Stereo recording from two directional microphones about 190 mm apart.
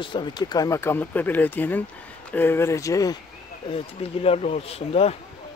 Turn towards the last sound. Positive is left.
turn(degrees=30)  # may be behind; listen again after turning